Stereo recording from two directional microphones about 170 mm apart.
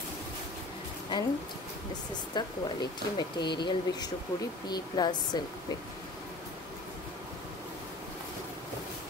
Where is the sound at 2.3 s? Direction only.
25° left (ahead or behind).